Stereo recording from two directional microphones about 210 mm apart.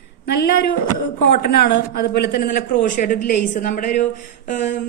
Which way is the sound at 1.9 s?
45° left (ahead or behind).